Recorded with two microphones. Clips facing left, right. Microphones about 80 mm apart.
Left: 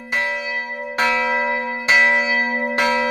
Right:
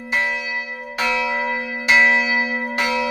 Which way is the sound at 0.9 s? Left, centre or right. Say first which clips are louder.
Left 2 dB; left.